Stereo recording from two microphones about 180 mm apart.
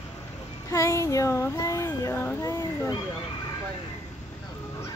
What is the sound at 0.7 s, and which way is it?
Speech, 20° left (ahead or behind).